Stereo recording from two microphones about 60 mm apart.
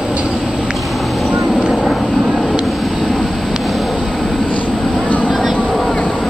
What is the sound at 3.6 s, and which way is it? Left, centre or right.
Vehicle, centre.